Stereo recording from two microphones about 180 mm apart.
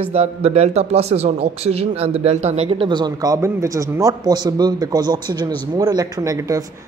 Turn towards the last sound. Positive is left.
turn(degrees=-20)  # may be behind; listen again after turning